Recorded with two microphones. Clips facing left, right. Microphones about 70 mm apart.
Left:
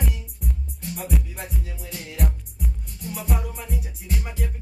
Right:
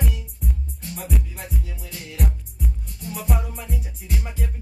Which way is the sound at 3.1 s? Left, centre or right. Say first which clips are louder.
Right 1 dB; centre.